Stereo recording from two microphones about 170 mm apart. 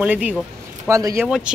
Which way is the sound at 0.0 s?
10° right (ahead or behind).